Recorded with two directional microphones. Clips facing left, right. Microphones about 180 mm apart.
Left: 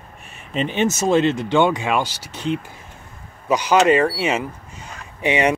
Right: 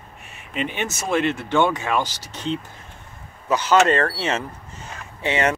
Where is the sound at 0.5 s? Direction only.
30° left (ahead or behind).